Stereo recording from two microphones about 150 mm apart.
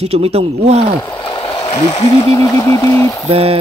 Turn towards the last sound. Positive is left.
turn(degrees=-40)  # may be behind; listen again after turning